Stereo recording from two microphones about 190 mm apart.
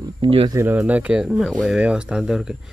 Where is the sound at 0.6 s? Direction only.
10° right (ahead or behind).